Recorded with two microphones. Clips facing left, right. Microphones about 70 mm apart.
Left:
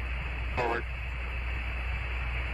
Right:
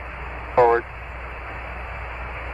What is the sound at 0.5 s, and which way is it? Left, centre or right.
Vehicle, right.